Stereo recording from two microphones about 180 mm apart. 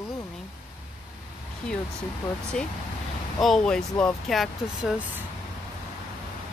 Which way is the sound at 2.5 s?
5° left (ahead or behind).